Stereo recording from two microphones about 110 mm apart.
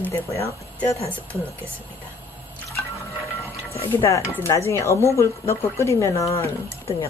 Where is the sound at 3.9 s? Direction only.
25° left (ahead or behind).